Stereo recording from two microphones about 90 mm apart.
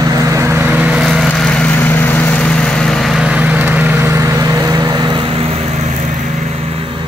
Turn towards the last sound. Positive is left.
turn(degrees=-85)